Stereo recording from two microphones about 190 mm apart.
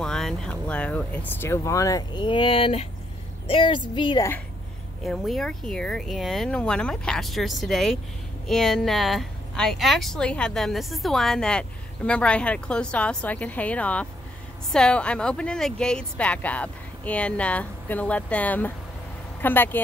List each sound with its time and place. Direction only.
0.0 s a woman's voice: 5° left (ahead or behind); by 4.3 s 25° left (ahead or behind)
5.0 s a woman's voice: centre (ahead or behind)